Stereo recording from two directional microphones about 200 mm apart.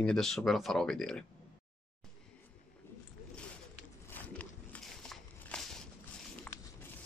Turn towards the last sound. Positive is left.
turn(degrees=5)  # may be behind; listen again after turning